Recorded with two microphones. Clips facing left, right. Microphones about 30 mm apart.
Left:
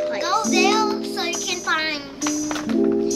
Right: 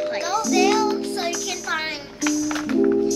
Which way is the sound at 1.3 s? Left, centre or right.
Centre.